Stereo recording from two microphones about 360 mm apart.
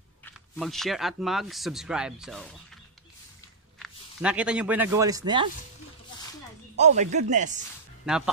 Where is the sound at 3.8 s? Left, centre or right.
Centre.